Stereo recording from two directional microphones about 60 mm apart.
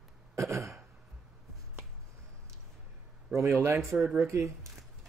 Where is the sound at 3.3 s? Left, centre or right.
Right.